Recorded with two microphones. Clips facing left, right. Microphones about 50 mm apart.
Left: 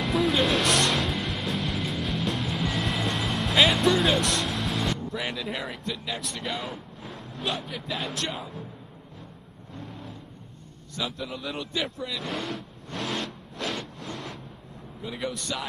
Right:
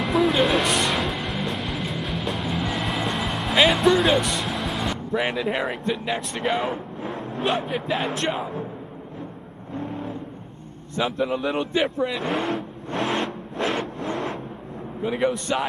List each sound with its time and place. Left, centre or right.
0.0 s music: centre
5.9 s speech: right
9.8 s vehicle: right
11.1 s speech: right
12.9 s vehicle: right
15.0 s speech: right